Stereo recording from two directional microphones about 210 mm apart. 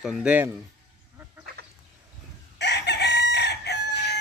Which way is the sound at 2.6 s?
55° left (ahead or behind).